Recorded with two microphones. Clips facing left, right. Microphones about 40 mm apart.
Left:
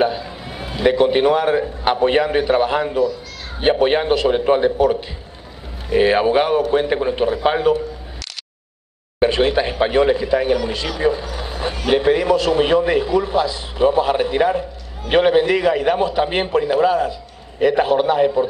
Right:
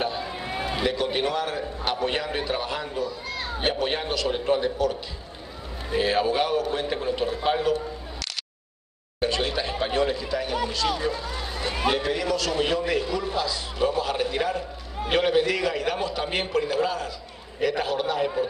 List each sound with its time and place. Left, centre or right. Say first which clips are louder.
0.6 s run: left 1 dB; centre
0.8 s speech: left 13 dB; left
9.2 s a man's voice: left 10 dB; left